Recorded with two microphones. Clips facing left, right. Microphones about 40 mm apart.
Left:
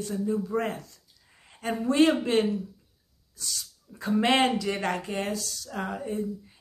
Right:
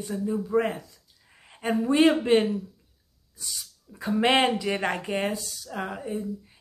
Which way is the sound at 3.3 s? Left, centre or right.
Centre.